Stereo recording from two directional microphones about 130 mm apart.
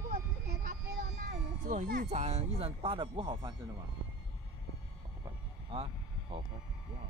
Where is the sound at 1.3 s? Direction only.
80° right; by 3.5 s 40° right (ahead or behind).